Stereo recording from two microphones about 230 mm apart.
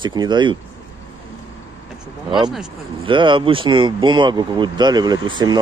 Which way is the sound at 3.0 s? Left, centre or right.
Right.